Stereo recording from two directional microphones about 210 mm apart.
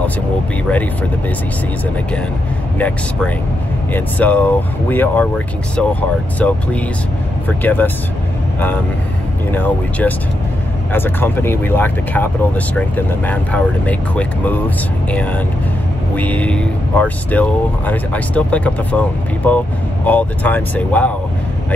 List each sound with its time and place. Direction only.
2.8 s speech: 5° left (ahead or behind)
9.5 s speech: 10° left (ahead or behind)